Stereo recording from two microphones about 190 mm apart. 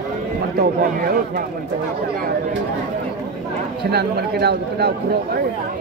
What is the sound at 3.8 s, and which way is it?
A man's voice, 60° right (ahead or behind).